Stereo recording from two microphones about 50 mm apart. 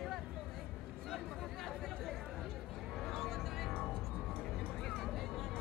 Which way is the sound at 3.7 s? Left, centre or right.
Left.